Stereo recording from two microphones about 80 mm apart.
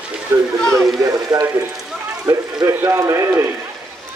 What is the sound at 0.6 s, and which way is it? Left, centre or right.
Speech, centre.